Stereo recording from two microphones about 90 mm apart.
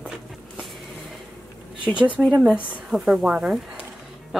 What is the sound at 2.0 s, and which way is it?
Speech, 15° right (ahead or behind).